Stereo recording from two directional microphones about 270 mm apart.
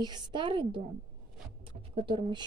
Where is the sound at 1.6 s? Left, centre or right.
Centre.